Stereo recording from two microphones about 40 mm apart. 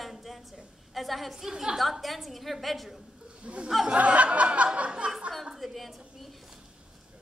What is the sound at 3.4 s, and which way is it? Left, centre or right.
Speech, right.